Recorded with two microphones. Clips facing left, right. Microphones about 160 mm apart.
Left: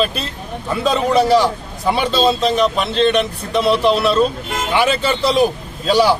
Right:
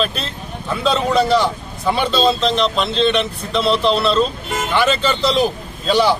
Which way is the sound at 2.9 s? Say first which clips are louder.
Left 2 dB; 50° left (ahead or behind).